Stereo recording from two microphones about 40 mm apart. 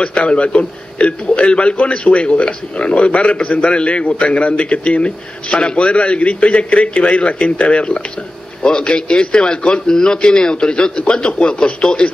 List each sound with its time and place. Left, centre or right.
0.0 s a man's voice: left